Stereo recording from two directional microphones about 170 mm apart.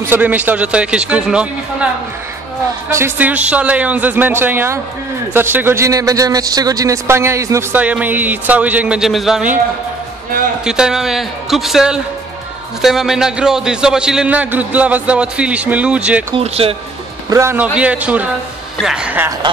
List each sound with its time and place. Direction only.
0.1 s a man's voice: 10° right (ahead or behind)
2.9 s a man's voice: 10° right (ahead or behind)
10.6 s a man's voice: 5° right (ahead or behind)
16.3 s speech: 35° right (ahead or behind)
17.3 s a man's voice: 15° right (ahead or behind)